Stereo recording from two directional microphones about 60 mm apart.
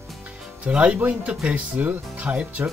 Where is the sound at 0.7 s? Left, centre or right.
Centre.